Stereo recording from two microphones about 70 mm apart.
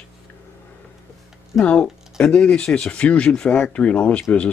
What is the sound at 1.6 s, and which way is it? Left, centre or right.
Speech, centre.